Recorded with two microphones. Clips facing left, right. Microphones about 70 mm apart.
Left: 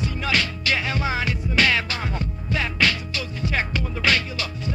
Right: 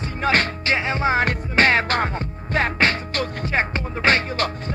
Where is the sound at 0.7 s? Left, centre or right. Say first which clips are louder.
Right 5 dB; right.